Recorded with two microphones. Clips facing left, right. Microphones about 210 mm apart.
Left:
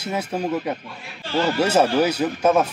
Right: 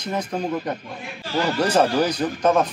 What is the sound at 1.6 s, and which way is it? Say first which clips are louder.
Speech: left 1 dB; 10° left (ahead or behind).